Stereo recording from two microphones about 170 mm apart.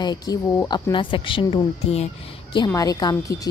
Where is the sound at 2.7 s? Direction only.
20° left (ahead or behind).